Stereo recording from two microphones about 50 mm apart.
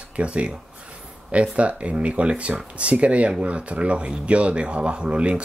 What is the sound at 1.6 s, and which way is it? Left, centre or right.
Speech, right.